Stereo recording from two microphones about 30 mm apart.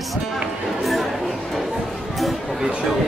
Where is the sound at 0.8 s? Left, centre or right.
Centre.